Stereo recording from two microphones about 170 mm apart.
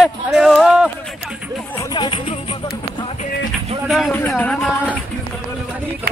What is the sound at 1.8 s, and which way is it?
Music, 25° left (ahead or behind).